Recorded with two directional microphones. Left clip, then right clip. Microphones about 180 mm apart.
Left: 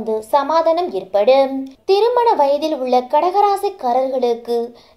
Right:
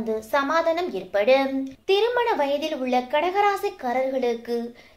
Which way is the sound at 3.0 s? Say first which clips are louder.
Left 7 dB; 90° left.